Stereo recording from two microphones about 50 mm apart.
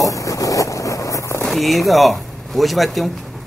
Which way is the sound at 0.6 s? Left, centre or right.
Left.